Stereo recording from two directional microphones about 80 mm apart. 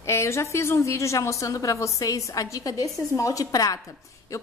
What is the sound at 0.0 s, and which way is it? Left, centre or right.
A woman's voice, left.